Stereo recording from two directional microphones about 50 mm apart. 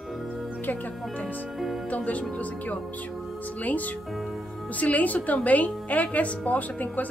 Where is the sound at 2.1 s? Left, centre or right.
Left.